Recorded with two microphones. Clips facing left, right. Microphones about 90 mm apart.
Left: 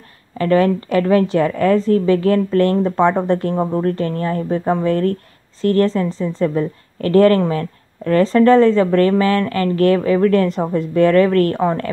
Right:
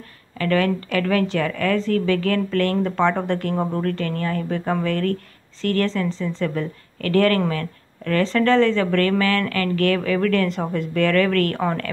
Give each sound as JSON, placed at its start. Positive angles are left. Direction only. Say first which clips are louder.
{"t": 0.4, "sound": "a woman's voice", "louder": "left 6 dB", "side_deg": 30}